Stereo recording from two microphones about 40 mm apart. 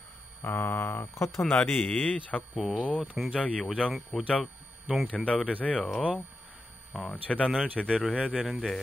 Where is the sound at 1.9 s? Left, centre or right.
Left.